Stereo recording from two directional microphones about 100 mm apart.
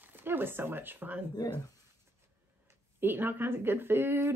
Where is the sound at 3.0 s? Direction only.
20° right (ahead or behind).